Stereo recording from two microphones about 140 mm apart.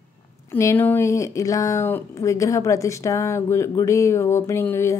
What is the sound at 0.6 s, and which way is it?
Speech, 15° left (ahead or behind).